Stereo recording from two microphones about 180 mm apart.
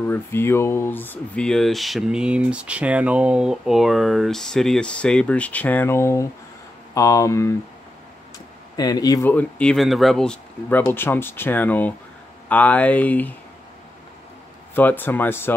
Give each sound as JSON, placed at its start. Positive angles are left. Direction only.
{"t": 0.1, "sound": "speech", "side_deg": 15}
{"t": 8.7, "sound": "speech", "side_deg": 20}
{"t": 9.3, "sound": "speech", "side_deg": 5}
{"t": 14.8, "sound": "speech", "side_deg": 10}